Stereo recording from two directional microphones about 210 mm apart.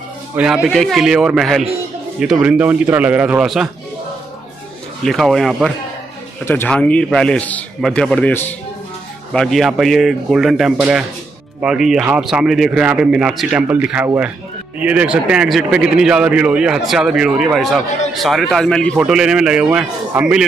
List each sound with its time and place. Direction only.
0.4 s a man's voice: 5° right (ahead or behind)
5.0 s a man's voice: centre (ahead or behind)